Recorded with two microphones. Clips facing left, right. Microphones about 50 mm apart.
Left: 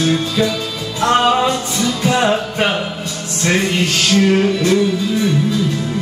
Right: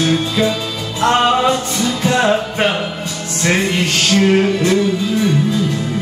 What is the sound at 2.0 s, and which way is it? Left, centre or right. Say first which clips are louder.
Music: right 1 dB; centre.